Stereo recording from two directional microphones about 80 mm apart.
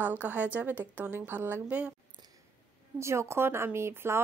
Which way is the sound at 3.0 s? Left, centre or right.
Right.